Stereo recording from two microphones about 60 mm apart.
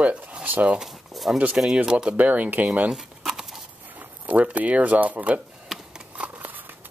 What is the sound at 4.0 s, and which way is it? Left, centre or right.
Speech, right.